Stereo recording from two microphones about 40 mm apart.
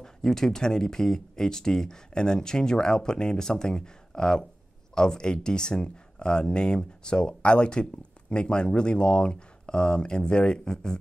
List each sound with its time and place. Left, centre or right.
0.0 s speech: centre